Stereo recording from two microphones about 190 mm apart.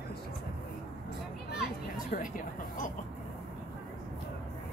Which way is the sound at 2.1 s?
45° left (ahead or behind).